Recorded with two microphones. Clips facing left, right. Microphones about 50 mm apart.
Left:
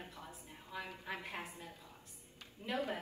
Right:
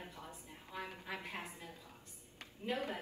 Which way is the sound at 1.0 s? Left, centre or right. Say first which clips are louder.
Left 1 dB; left.